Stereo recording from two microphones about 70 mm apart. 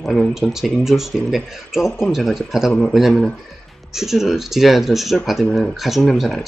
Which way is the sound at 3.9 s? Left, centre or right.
Centre.